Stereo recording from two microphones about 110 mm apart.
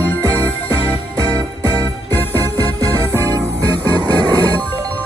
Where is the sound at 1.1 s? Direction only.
35° right (ahead or behind).